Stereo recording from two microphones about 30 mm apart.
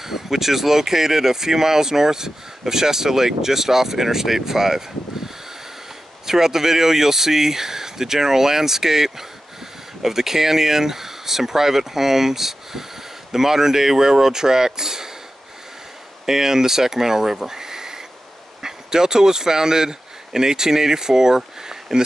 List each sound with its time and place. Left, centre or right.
0.0 s speech: centre
16.3 s speech: centre